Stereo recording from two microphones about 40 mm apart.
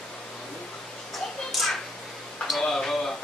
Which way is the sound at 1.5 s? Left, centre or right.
Centre.